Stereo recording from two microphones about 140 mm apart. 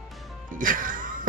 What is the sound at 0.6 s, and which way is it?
Speech, 75° right (ahead or behind).